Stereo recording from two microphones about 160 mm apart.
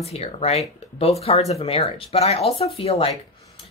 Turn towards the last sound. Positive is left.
turn(degrees=40)  # may be behind; listen again after turning